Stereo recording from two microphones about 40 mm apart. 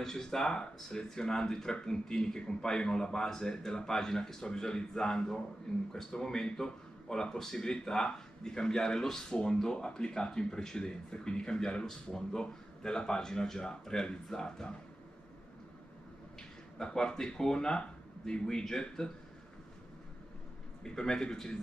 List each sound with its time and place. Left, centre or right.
0.0 s speech: centre
16.7 s speech: centre
20.8 s speech: centre